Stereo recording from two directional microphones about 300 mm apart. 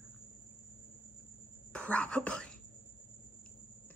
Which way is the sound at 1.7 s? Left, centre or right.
Centre.